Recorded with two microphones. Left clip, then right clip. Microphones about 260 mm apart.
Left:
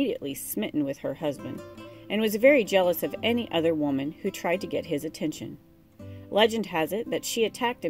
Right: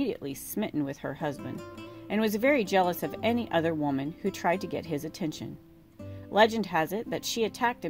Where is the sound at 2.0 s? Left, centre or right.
Right.